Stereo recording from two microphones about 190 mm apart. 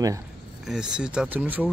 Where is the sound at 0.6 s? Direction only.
5° right (ahead or behind).